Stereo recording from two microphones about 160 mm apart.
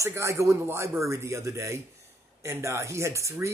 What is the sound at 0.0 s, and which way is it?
Speech, 20° right (ahead or behind).